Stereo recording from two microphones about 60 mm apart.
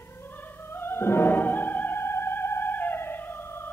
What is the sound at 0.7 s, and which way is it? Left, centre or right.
Music, left.